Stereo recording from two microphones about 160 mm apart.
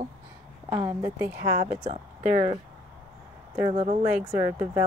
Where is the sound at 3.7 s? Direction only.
40° right (ahead or behind).